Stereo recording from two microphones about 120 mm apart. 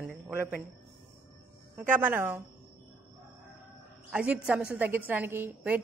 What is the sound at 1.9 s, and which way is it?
Speech, 15° right (ahead or behind).